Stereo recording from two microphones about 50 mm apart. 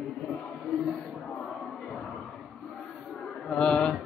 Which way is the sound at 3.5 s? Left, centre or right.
Centre.